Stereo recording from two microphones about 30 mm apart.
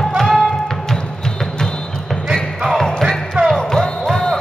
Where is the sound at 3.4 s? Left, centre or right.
Right.